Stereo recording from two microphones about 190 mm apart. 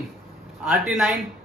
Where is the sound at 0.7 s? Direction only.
Centre (ahead or behind).